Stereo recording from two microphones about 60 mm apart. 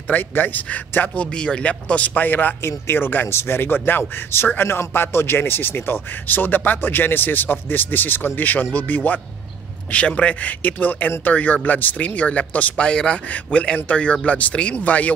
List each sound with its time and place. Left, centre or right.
0.1 s speech: left